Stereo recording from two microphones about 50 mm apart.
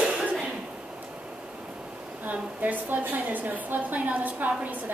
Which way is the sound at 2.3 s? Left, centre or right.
Right.